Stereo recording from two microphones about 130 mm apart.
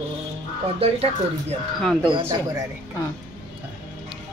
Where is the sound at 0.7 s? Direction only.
50° right (ahead or behind).